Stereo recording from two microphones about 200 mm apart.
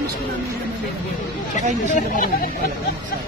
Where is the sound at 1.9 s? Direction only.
40° left (ahead or behind).